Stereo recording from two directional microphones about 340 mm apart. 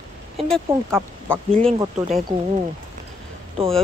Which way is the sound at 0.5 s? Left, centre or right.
Centre.